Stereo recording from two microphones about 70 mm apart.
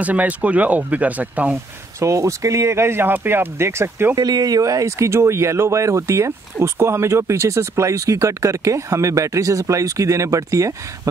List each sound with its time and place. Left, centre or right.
0.0 s speech: right
2.0 s speech: right
4.1 s speech: right